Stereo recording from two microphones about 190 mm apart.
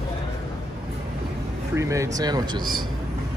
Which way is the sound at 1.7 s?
15° right (ahead or behind).